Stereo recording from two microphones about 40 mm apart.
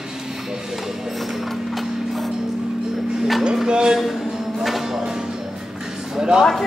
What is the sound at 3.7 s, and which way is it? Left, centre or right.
Speech, right.